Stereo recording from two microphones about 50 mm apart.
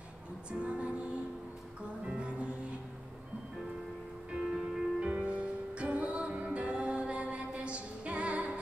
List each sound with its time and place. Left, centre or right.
0.5 s music: right
2.0 s music: right
4.3 s music: centre
5.0 s music: right